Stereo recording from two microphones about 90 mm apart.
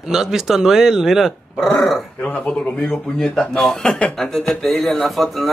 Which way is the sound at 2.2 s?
15° left (ahead or behind).